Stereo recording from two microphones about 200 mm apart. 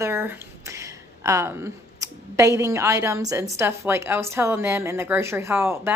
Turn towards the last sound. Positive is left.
turn(degrees=-10)  # may be behind; listen again after turning